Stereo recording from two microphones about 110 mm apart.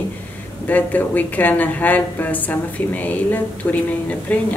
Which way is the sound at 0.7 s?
15° left (ahead or behind).